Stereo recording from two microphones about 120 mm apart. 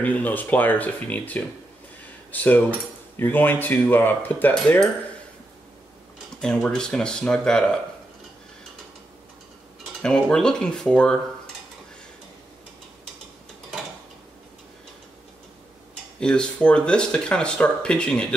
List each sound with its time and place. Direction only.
0.0 s speech: 15° left (ahead or behind)
6.4 s speech: 5° left (ahead or behind)
10.0 s speech: 5° left (ahead or behind)
16.2 s speech: 5° left (ahead or behind)